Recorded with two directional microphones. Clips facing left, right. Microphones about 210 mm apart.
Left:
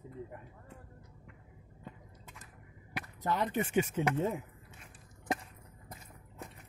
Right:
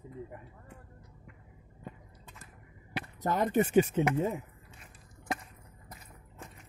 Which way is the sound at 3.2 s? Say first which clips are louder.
Right 5 dB; 45° right (ahead or behind).